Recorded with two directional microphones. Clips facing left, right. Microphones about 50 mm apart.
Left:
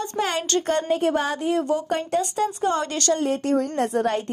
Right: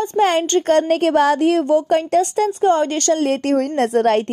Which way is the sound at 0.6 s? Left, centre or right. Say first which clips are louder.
Right 6 dB; right.